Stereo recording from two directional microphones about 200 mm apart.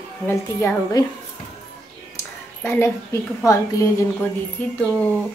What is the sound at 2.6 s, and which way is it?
Speech, 10° left (ahead or behind).